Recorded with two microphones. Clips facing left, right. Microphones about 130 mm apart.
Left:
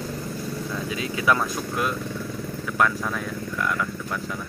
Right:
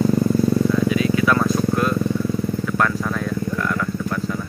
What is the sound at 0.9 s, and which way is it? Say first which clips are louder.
Vehicle: right 6 dB; 25° left (ahead or behind).